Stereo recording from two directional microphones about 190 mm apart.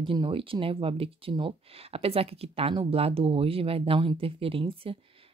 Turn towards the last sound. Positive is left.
turn(degrees=-30)  # may be behind; listen again after turning